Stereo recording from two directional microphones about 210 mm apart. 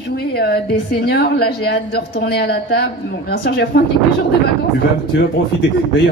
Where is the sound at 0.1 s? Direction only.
50° left (ahead or behind).